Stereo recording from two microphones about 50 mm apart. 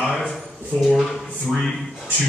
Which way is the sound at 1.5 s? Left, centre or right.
Centre.